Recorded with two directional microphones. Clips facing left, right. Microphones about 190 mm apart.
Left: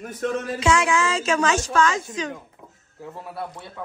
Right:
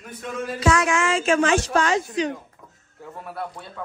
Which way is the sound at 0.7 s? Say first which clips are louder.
Even; 30° left (ahead or behind).